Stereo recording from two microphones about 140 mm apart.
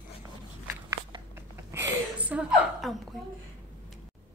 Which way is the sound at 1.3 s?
15° right (ahead or behind).